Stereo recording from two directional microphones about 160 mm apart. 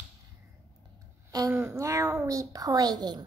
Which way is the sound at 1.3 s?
20° right (ahead or behind).